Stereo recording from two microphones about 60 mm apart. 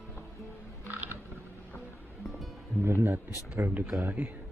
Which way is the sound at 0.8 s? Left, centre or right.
Right.